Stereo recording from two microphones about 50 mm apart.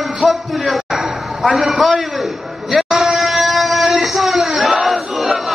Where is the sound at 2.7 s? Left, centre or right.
Centre.